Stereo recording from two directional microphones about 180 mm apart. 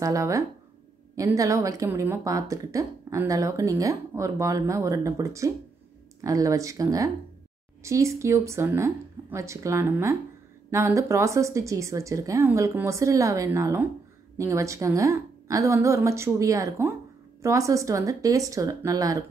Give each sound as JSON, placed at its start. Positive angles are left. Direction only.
{"t": 0.0, "sound": "a woman's voice", "side_deg": -15}